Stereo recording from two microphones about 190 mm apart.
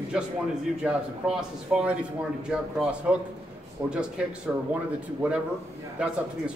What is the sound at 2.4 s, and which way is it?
Speech, 5° right (ahead or behind).